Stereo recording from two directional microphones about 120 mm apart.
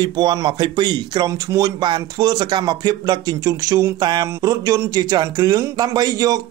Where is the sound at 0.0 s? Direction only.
35° right (ahead or behind).